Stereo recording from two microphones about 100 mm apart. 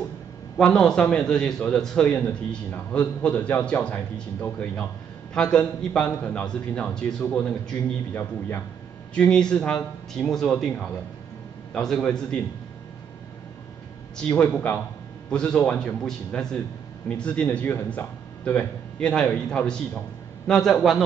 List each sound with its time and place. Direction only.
0.6 s a man's voice: 5° left (ahead or behind)
8.1 s a man's voice: 20° left (ahead or behind)
9.1 s a man's voice: 10° left (ahead or behind)
14.1 s a man's voice: 10° left (ahead or behind)